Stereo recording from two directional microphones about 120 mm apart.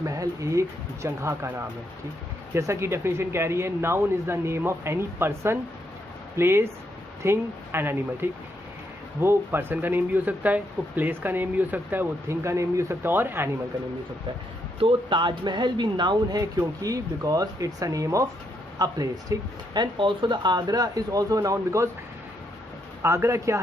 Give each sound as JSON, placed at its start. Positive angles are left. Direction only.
{"t": 0.0, "sound": "speech", "side_deg": -30}
{"t": 2.5, "sound": "speech", "side_deg": -20}
{"t": 14.8, "sound": "speech", "side_deg": -45}
{"t": 23.0, "sound": "speech", "side_deg": -25}